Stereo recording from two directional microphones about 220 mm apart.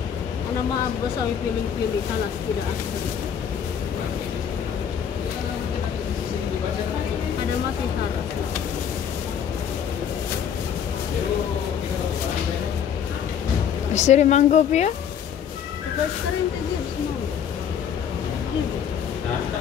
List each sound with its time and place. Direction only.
13.9 s speech: 30° left (ahead or behind)